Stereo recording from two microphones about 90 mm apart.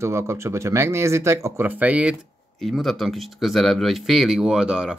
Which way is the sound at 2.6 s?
Centre (ahead or behind).